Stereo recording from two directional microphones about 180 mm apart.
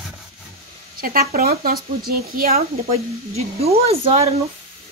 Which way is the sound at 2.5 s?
35° right (ahead or behind).